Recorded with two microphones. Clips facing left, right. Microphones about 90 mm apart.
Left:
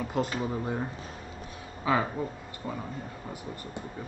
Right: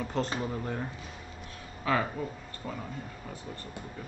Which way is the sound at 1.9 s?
15° left (ahead or behind).